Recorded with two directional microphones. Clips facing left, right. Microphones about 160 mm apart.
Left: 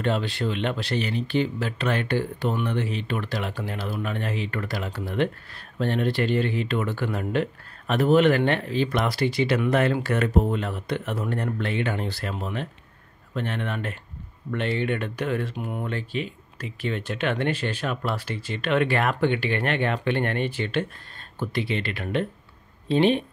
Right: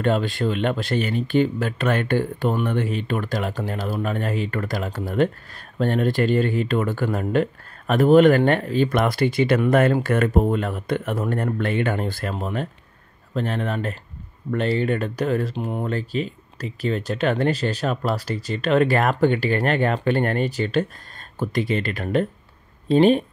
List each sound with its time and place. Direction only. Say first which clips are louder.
0.0 s speech: right 4 dB; 45° right (ahead or behind)